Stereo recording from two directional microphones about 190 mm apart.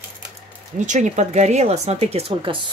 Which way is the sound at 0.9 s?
40° right (ahead or behind).